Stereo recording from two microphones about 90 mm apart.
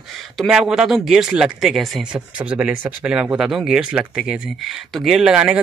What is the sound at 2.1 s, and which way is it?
Speech, 10° right (ahead or behind).